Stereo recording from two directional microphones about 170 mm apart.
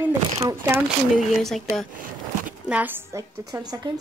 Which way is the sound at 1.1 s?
Centre (ahead or behind).